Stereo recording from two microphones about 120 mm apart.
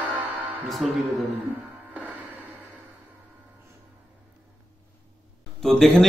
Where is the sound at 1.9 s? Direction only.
15° right (ahead or behind).